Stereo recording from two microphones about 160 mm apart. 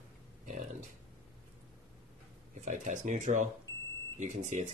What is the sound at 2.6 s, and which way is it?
Speech, 50° right (ahead or behind).